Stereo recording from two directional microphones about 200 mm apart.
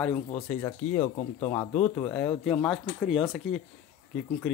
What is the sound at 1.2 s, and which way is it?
Speech, 30° left (ahead or behind).